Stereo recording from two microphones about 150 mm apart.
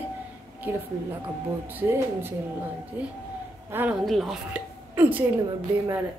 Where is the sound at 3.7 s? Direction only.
10° right (ahead or behind).